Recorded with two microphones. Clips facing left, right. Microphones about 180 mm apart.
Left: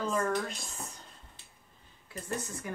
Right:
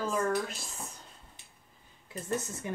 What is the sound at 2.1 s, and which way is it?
Speech, 25° right (ahead or behind).